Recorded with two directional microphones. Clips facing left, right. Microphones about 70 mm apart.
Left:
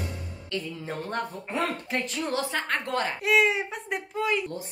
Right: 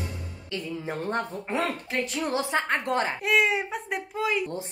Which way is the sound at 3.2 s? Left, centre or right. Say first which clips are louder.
Left 4 dB; centre.